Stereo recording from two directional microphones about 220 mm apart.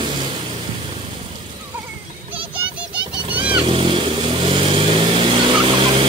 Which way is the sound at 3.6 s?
25° right (ahead or behind).